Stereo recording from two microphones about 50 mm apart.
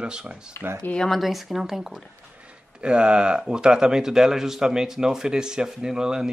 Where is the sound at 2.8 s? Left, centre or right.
Centre.